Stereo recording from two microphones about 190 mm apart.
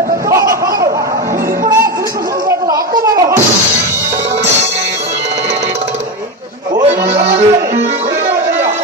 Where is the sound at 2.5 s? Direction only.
20° right (ahead or behind).